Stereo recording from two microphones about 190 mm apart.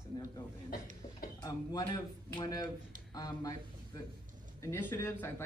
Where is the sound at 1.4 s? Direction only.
20° left (ahead or behind).